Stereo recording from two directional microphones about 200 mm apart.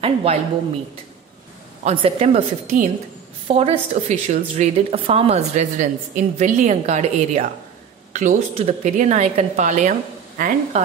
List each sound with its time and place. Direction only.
0.0 s a woman's voice: 30° right (ahead or behind)
1.9 s a woman's voice: 30° right (ahead or behind)